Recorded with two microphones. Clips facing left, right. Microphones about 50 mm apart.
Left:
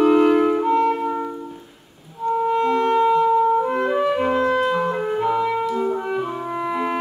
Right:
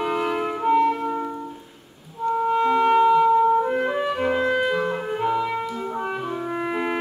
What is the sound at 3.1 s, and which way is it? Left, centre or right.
Clarinet, centre.